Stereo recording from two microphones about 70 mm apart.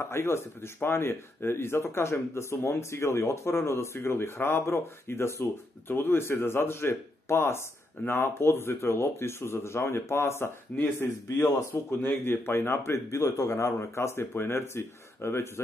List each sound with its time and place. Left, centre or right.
0.0 s speech: left